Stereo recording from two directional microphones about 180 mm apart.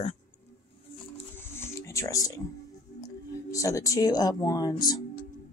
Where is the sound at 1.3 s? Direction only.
15° left (ahead or behind).